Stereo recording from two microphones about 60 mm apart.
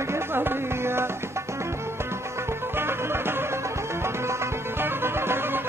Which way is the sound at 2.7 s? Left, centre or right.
Right.